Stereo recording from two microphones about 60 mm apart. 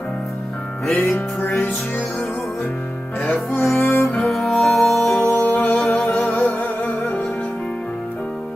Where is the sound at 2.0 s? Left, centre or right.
Centre.